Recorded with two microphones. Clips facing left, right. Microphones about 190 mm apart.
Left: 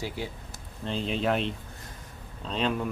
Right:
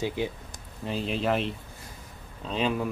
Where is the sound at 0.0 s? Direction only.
20° right (ahead or behind).